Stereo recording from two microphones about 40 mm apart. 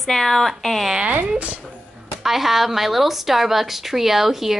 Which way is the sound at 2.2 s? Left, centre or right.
Centre.